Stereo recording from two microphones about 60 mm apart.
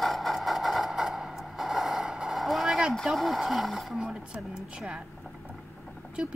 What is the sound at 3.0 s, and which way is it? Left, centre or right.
Speech, centre.